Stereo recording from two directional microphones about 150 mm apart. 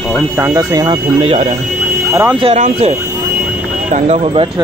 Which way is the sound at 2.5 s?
50° right (ahead or behind).